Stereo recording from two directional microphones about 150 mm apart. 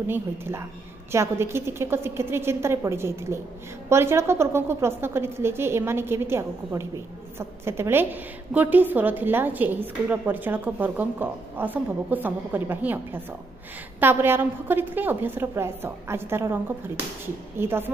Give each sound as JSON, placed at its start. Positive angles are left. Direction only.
{"t": 0.0, "sound": "a woman's voice", "side_deg": -15}
{"t": 17.6, "sound": "a woman's voice", "side_deg": -15}